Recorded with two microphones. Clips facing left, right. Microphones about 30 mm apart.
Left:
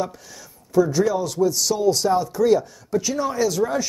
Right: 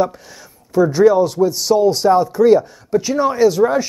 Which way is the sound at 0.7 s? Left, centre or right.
Right.